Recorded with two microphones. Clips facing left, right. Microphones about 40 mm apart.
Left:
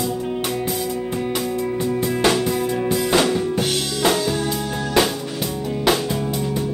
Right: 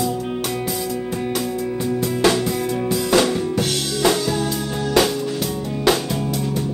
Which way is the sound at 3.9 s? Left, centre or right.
Centre.